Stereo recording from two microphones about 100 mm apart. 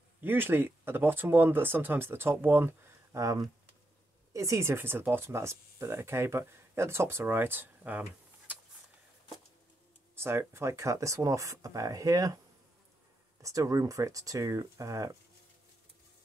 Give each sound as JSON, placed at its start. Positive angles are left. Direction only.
{"t": 0.2, "sound": "speech", "side_deg": -20}
{"t": 10.1, "sound": "speech", "side_deg": -25}
{"t": 13.4, "sound": "speech", "side_deg": -35}